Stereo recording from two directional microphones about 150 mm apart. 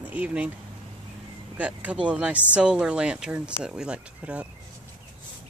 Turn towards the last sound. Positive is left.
turn(degrees=-10)  # may be behind; listen again after turning